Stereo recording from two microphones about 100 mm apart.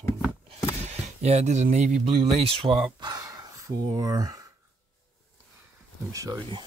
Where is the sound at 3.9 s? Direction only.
35° right (ahead or behind).